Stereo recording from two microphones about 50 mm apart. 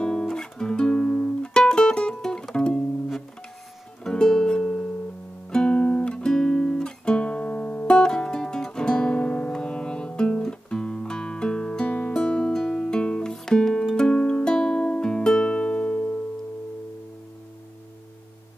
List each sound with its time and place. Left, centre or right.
0.0 s music: centre
4.0 s music: centre